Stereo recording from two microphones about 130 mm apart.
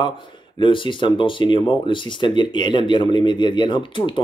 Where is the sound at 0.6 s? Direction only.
40° left (ahead or behind).